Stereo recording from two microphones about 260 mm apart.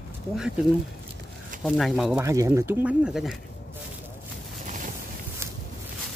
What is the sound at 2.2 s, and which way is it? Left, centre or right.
Speech, centre.